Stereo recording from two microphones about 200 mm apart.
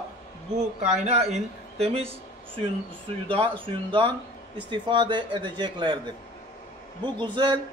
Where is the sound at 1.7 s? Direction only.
30° right (ahead or behind).